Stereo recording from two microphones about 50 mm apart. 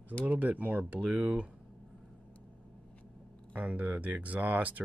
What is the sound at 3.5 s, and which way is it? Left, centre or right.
Speech, right.